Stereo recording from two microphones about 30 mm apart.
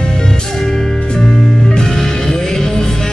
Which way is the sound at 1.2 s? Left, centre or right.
Centre.